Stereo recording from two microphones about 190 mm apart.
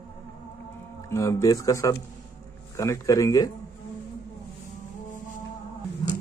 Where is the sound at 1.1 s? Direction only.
15° left (ahead or behind).